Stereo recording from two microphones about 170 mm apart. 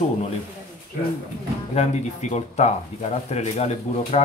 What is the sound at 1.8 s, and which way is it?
Speech, 40° left (ahead or behind).